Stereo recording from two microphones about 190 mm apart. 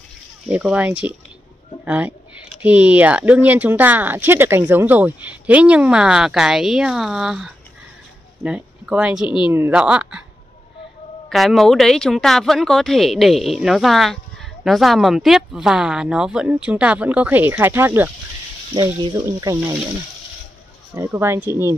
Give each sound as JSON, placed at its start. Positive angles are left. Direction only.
{"t": 0.5, "sound": "speech", "side_deg": -5}
{"t": 11.2, "sound": "speech", "side_deg": 0}
{"t": 20.9, "sound": "speech", "side_deg": -15}